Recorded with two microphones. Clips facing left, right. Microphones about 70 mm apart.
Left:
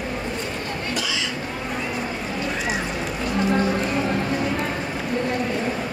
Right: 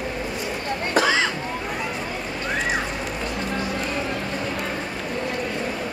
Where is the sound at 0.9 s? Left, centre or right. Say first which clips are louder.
Right 10 dB; right.